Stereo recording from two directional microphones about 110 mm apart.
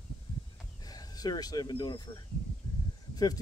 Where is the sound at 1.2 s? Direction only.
35° left (ahead or behind).